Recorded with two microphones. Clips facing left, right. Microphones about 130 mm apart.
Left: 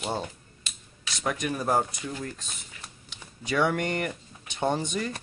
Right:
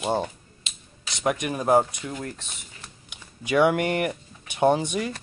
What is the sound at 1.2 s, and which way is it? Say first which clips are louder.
Speech: right 4 dB; 15° right (ahead or behind).